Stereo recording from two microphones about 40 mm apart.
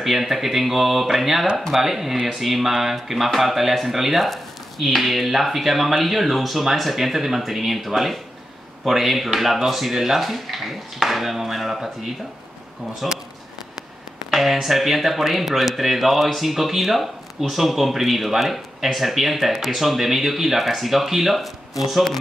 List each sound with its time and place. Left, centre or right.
0.0 s speech: centre
13.0 s speech: centre
14.3 s speech: centre